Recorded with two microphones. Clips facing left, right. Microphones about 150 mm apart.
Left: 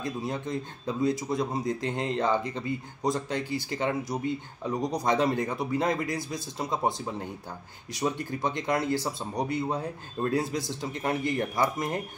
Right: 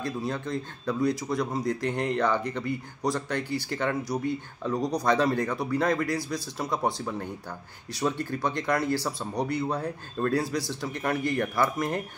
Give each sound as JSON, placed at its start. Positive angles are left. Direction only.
{"t": 0.0, "sound": "speech", "side_deg": 20}